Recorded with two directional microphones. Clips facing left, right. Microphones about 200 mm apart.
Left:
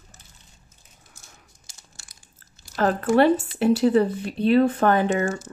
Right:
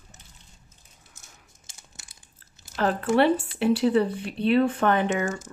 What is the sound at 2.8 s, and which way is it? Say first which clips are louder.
Speech: left 3 dB; 45° left (ahead or behind).